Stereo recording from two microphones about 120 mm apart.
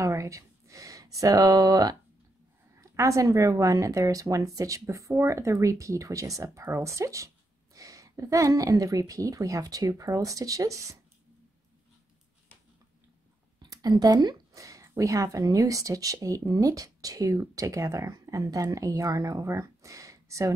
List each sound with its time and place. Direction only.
0.0 s a sound: 25° right (ahead or behind)
2.8 s a woman's voice: 25° right (ahead or behind)
13.6 s speech: 35° right (ahead or behind)